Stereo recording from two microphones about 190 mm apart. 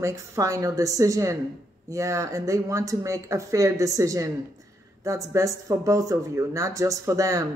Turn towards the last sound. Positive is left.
turn(degrees=-15)  # may be behind; listen again after turning